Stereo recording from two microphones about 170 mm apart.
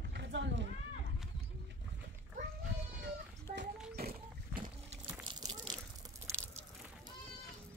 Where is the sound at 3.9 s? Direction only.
65° right (ahead or behind).